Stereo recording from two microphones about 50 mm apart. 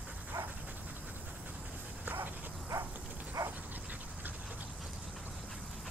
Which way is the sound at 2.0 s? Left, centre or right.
Right.